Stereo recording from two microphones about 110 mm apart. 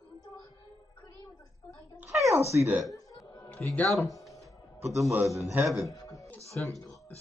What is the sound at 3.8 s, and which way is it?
Speech, centre (ahead or behind).